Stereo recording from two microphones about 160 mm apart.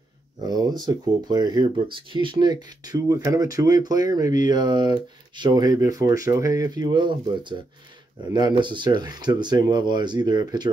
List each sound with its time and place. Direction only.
0.4 s speech: 25° right (ahead or behind)